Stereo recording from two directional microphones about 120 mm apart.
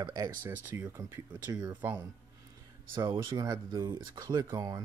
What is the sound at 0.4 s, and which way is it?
Speech, 20° right (ahead or behind).